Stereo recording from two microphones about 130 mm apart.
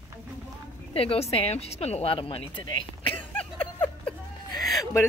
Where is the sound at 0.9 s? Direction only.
50° left (ahead or behind).